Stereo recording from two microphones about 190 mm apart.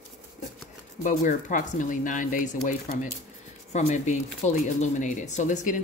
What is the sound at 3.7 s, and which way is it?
Speech, 35° left (ahead or behind).